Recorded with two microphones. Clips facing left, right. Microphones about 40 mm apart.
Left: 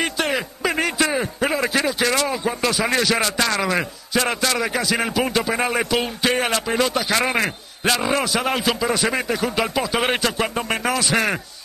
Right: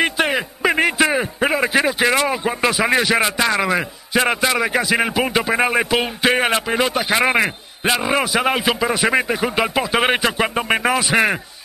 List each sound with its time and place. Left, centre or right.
0.0 s a man's voice: centre